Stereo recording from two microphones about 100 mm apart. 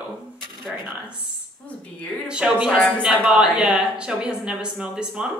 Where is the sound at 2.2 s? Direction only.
10° right (ahead or behind).